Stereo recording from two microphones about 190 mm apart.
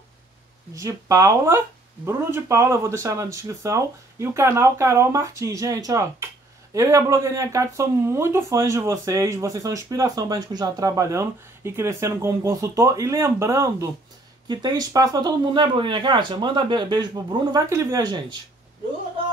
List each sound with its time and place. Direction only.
0.7 s speech: 15° right (ahead or behind)